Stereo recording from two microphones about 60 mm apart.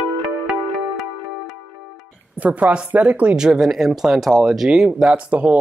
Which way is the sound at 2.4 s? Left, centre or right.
Right.